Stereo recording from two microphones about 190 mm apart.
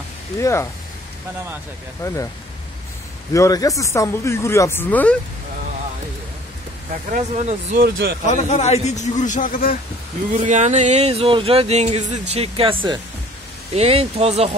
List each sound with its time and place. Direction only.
0.4 s speech: 15° left (ahead or behind)
2.0 s speech: 15° left (ahead or behind)
3.3 s speech: 15° left (ahead or behind)
7.1 s speech: 40° right (ahead or behind)
8.3 s a man's voice: 35° left (ahead or behind)
10.3 s speech: 40° right (ahead or behind)
13.7 s speech: 30° right (ahead or behind)